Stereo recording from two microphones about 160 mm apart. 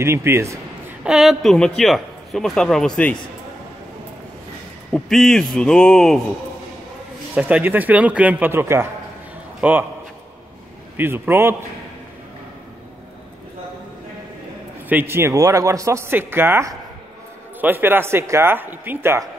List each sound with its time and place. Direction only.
0.0 s speech: 15° right (ahead or behind)
1.0 s a man's voice: centre (ahead or behind)
4.9 s a man's voice: centre (ahead or behind)
7.3 s a man's voice: 10° right (ahead or behind)
11.0 s speech: 10° right (ahead or behind)
14.9 s speech: 15° right (ahead or behind)